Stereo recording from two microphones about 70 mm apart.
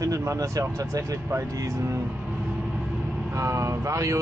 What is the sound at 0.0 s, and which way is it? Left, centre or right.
Speech, right.